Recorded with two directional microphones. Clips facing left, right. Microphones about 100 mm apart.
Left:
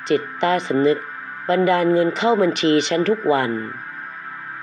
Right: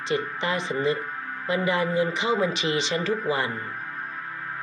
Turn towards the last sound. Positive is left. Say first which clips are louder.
# left 7 dB
turn(degrees=60)  # may be behind; listen again after turning